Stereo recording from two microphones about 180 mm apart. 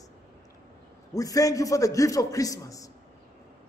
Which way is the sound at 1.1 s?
20° left (ahead or behind).